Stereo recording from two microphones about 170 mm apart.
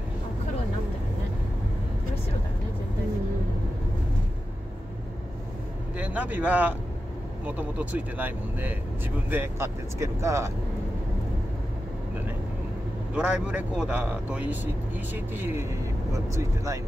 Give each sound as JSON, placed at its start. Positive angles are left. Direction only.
{"t": 5.9, "sound": "speech", "side_deg": -10}
{"t": 13.1, "sound": "speech", "side_deg": -5}